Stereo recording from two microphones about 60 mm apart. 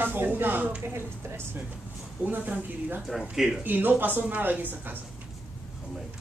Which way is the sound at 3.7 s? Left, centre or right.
Right.